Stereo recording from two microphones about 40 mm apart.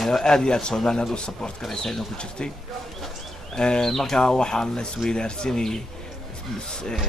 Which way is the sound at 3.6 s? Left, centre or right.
Centre.